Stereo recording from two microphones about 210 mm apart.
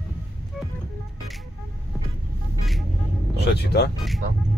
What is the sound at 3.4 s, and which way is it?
Vehicle, 55° left (ahead or behind).